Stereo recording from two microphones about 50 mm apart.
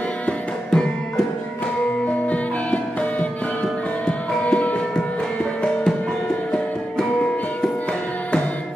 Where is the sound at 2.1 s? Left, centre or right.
Left.